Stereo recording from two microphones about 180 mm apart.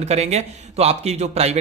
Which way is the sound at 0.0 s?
35° right (ahead or behind).